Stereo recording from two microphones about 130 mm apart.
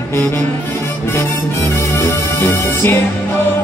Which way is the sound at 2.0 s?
15° left (ahead or behind).